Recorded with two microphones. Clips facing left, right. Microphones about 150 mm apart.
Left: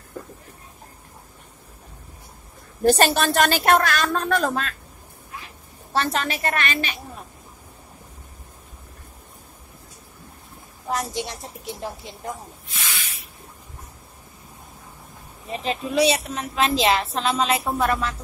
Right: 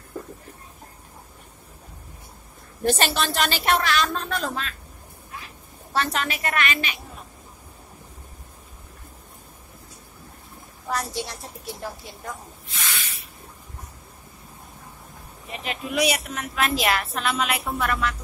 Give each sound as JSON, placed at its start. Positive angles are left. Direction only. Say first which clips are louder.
{"t": 2.8, "sound": "a woman's voice", "louder": "left 5 dB", "side_deg": 40}
{"t": 5.9, "sound": "a woman's voice", "louder": "left 2 dB", "side_deg": 35}
{"t": 10.9, "sound": "a woman's voice", "louder": "left 2 dB", "side_deg": 20}
{"t": 15.5, "sound": "a woman's voice", "louder": "left 4 dB", "side_deg": 30}